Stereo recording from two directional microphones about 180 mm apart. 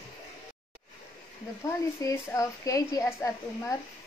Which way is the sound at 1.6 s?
15° left (ahead or behind).